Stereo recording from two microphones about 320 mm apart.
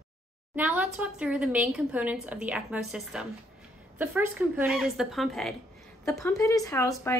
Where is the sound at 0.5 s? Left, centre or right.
Centre.